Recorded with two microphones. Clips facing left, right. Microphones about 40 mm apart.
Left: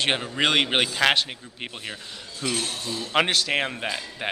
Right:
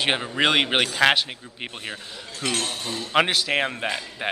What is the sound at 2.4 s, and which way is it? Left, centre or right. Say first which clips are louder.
Speech: right 1 dB; right.